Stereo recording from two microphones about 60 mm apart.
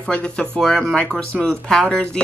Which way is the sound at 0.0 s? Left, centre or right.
Centre.